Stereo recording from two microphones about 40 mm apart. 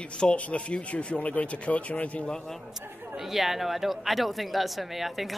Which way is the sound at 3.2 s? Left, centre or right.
Centre.